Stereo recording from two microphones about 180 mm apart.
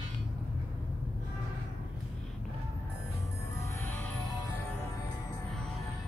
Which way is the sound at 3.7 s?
10° left (ahead or behind).